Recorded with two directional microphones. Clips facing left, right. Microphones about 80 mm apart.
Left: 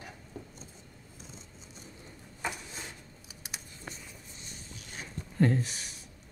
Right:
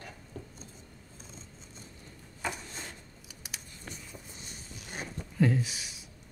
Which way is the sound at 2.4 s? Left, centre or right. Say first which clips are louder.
Even; centre.